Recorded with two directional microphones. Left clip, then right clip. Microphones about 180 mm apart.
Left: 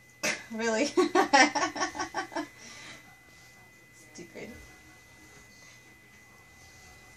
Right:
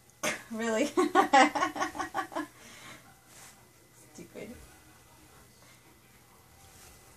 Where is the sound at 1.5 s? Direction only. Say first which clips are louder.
Left 1 dB; 20° left (ahead or behind).